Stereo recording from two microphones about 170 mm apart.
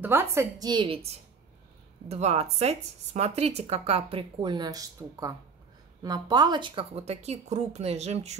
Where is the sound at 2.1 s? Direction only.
40° right (ahead or behind).